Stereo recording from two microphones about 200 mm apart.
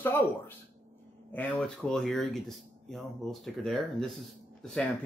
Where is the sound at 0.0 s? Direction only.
10° left (ahead or behind).